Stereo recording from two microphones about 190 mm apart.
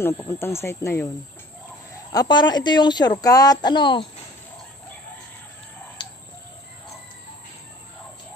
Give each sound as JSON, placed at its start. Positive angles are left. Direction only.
{"t": 0.0, "sound": "speech", "side_deg": 15}
{"t": 2.1, "sound": "speech", "side_deg": 20}
{"t": 6.0, "sound": "chicken", "side_deg": 25}